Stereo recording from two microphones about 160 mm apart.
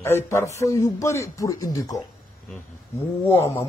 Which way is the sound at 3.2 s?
15° left (ahead or behind).